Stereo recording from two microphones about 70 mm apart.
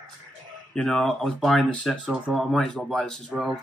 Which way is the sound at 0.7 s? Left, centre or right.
Centre.